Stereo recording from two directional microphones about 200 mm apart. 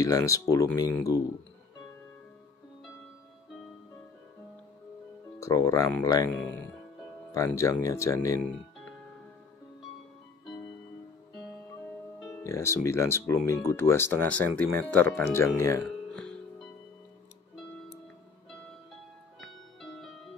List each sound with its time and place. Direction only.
0.0 s speech: 15° left (ahead or behind)
5.4 s speech: 15° left (ahead or behind)
12.2 s speech: 15° left (ahead or behind)
16.1 s music: 5° left (ahead or behind)
19.4 s music: centre (ahead or behind)